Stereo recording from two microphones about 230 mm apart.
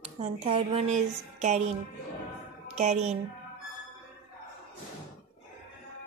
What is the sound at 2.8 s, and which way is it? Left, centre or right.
Speech, right.